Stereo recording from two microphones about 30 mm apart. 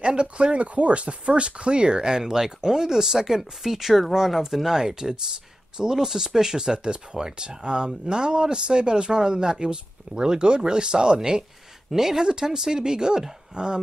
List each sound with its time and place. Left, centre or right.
0.0 s speech: right
0.6 s speech: right
11.9 s speech: centre